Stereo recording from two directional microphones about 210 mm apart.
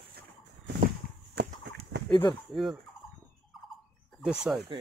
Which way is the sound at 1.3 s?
50° right (ahead or behind).